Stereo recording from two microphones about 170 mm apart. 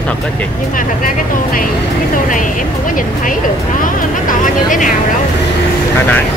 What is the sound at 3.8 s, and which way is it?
Speech, 50° left (ahead or behind).